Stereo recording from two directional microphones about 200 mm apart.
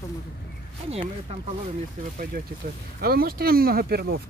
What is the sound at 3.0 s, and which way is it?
Speech, 50° right (ahead or behind).